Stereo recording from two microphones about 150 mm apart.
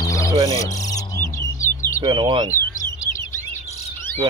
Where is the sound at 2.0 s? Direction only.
35° right (ahead or behind).